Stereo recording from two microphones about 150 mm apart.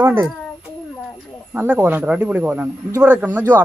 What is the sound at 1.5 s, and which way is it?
Speech, 10° right (ahead or behind).